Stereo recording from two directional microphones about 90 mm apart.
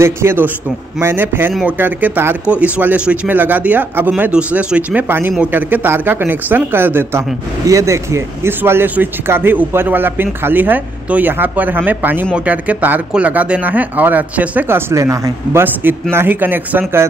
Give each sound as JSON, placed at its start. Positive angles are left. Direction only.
{"t": 0.0, "sound": "speech", "side_deg": -30}
{"t": 14.9, "sound": "speech", "side_deg": -35}
{"t": 15.6, "sound": "speech", "side_deg": -20}